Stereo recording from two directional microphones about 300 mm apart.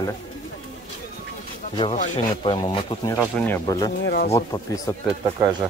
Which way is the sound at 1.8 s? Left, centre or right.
Centre.